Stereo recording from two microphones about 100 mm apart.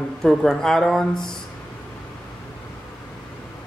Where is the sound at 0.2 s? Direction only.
Centre (ahead or behind).